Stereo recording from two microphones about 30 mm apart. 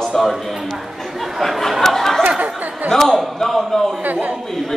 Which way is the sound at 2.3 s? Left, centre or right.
Right.